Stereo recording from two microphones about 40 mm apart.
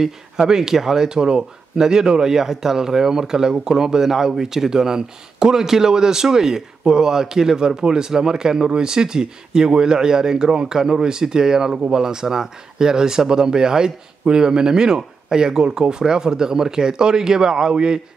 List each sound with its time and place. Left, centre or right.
0.0 s speech: centre